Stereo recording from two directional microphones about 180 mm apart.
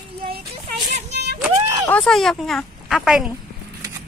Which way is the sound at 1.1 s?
70° right (ahead or behind).